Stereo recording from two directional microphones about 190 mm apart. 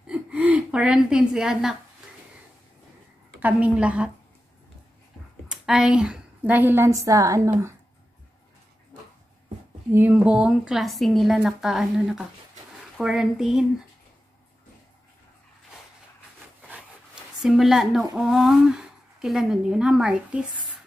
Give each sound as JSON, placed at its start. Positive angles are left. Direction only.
{"t": 0.0, "sound": "a sound", "side_deg": -5}
{"t": 3.3, "sound": "a woman's voice", "side_deg": -10}
{"t": 5.5, "sound": "a woman's voice", "side_deg": -5}
{"t": 9.8, "sound": "a woman's voice", "side_deg": -10}
{"t": 16.6, "sound": "zipper", "side_deg": -5}
{"t": 18.1, "sound": "a woman's voice", "side_deg": 0}